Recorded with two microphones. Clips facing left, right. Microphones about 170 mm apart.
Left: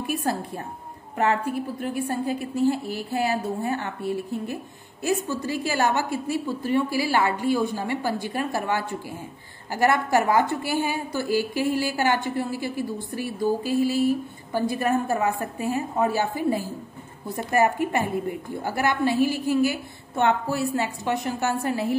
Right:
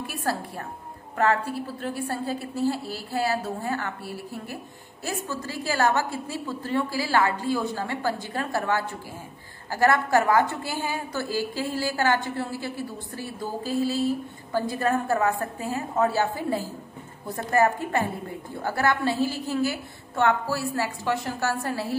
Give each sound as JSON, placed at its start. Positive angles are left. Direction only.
{"t": 0.0, "sound": "music", "side_deg": 20}
{"t": 1.1, "sound": "a woman's voice", "side_deg": 15}